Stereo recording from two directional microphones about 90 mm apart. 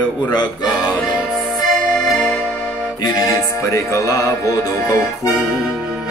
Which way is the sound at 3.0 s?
40° left (ahead or behind).